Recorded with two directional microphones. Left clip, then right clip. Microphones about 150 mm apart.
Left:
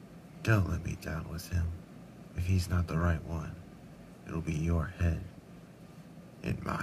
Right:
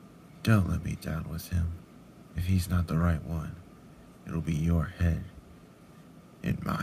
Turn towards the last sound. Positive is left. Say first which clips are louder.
# right 2 dB
turn(degrees=-10)  # may be behind; listen again after turning